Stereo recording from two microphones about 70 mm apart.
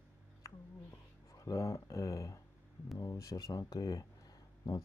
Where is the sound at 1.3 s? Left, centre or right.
Left.